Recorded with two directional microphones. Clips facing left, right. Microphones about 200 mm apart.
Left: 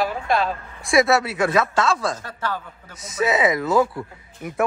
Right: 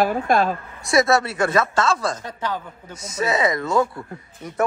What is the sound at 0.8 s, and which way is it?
Speech, centre (ahead or behind).